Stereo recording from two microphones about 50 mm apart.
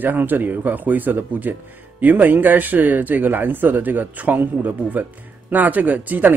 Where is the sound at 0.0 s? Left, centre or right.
Right.